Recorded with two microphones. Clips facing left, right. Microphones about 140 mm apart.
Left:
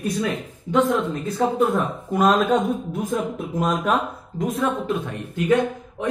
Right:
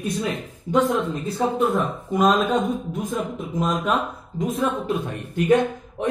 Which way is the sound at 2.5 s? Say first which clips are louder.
Left 2 dB; 10° left (ahead or behind).